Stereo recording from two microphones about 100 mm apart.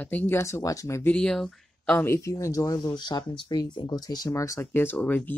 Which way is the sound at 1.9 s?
30° left (ahead or behind).